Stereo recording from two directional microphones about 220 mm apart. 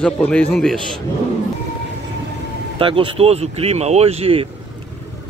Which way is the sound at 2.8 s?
25° right (ahead or behind).